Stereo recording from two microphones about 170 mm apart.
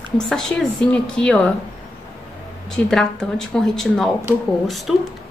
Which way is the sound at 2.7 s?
5° left (ahead or behind).